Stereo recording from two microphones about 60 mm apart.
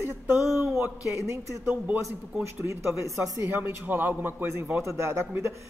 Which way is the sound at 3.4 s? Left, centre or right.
Right.